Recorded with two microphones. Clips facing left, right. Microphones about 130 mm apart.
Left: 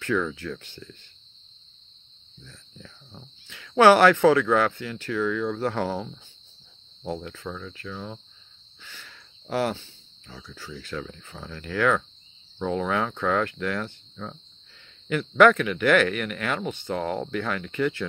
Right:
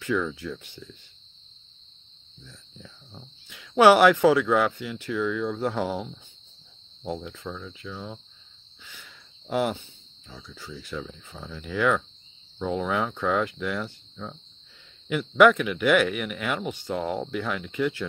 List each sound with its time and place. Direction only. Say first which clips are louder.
0.0 s speech: left 1 dB; 5° right (ahead or behind)
2.4 s speech: even; 10° right (ahead or behind)
8.8 s a sound: left 2 dB; 10° right (ahead or behind)
10.4 s speech: left 1 dB; 15° right (ahead or behind)